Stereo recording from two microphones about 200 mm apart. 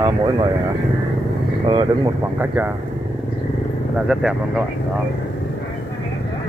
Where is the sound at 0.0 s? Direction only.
20° right (ahead or behind).